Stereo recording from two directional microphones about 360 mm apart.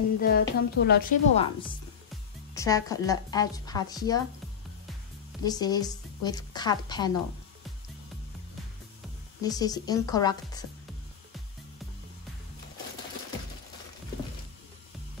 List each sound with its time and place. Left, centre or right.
0.2 s a woman's voice: left
1.4 s a woman's voice: centre
5.4 s a woman's voice: centre
9.4 s a woman's voice: centre